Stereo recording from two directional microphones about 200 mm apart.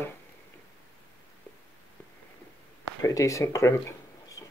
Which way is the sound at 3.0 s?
15° left (ahead or behind).